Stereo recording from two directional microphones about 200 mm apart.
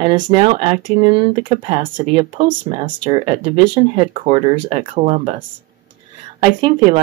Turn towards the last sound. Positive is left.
turn(degrees=-25)  # may be behind; listen again after turning